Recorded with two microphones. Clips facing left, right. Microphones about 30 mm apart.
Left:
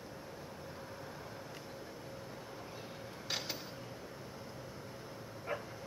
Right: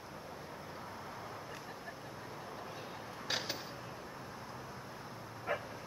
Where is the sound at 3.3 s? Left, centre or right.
Centre.